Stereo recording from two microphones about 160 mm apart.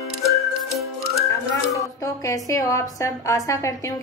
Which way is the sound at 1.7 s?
20° left (ahead or behind).